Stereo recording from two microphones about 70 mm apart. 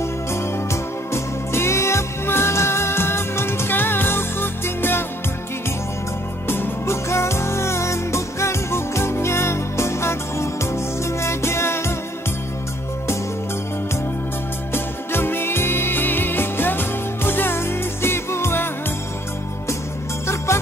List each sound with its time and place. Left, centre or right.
0.0 s music: left
6.4 s music: left
14.7 s music: left